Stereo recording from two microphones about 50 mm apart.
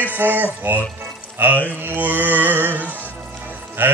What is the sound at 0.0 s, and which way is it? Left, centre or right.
Speech, right.